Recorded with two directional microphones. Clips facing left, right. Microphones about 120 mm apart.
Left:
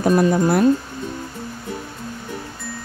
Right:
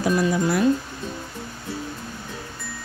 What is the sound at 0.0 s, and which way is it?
Speech, 45° left (ahead or behind).